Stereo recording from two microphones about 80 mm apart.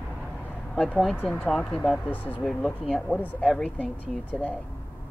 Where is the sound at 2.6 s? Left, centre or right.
Centre.